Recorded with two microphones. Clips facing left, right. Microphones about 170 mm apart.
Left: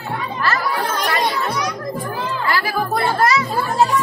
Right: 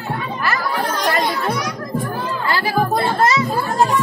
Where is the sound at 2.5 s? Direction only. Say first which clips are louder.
Right 3 dB; 25° right (ahead or behind).